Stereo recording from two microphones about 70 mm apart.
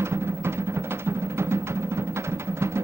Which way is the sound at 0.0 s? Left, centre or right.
Right.